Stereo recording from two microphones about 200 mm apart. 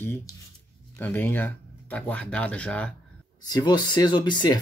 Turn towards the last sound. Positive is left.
turn(degrees=20)  # may be behind; listen again after turning